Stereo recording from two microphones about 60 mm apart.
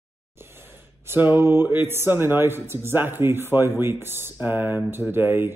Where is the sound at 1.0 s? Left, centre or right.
Right.